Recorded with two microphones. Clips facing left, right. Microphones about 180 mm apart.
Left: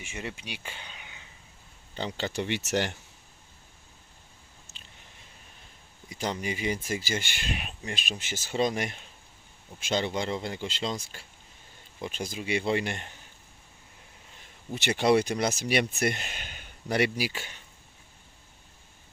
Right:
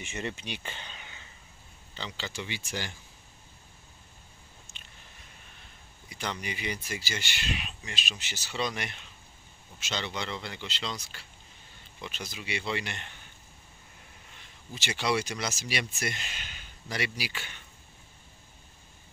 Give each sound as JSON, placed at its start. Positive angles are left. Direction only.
{"t": 0.0, "sound": "speech", "side_deg": 10}
{"t": 2.0, "sound": "speech", "side_deg": 55}
{"t": 4.7, "sound": "a sound", "side_deg": 35}
{"t": 6.0, "sound": "speech", "side_deg": 40}
{"t": 14.7, "sound": "speech", "side_deg": 55}
{"t": 17.3, "sound": "speech", "side_deg": 40}